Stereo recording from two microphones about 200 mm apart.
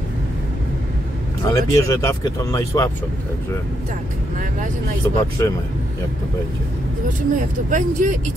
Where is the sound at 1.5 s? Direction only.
15° left (ahead or behind).